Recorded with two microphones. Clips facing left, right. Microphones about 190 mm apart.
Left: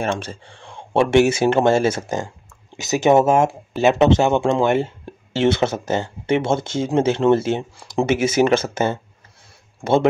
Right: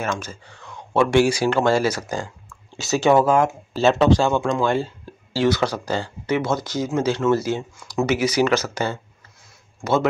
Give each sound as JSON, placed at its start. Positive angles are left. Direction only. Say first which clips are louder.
{"t": 0.0, "sound": "speech", "louder": "left 3 dB", "side_deg": 30}